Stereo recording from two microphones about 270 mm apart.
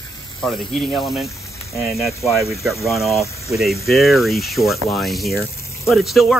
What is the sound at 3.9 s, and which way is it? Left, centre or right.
Speech, centre.